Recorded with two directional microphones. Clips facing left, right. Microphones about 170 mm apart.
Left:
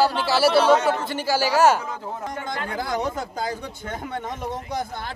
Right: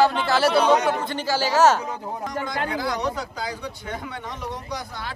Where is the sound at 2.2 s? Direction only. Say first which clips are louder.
Right 4 dB; 50° left (ahead or behind).